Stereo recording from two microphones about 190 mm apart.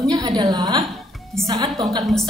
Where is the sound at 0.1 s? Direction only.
20° right (ahead or behind).